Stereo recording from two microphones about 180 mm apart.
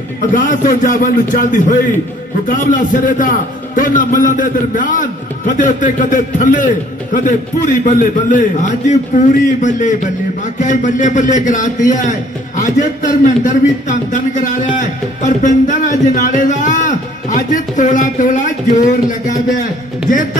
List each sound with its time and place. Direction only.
0.3 s a man's voice: 45° left (ahead or behind)